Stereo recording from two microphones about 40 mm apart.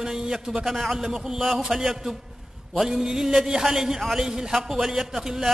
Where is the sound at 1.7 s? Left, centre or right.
Centre.